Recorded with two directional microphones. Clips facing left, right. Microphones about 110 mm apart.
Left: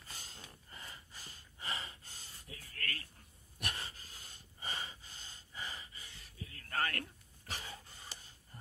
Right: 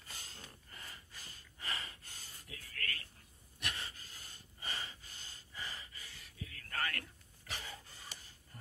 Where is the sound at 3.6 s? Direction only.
45° left (ahead or behind).